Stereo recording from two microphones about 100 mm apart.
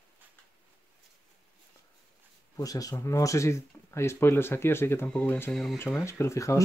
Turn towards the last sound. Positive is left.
turn(degrees=30)  # may be behind; listen again after turning